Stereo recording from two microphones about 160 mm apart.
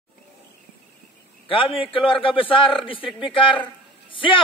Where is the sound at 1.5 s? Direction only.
35° left (ahead or behind).